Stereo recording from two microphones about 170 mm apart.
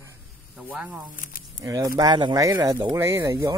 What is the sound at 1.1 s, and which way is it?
Speech, 55° left (ahead or behind).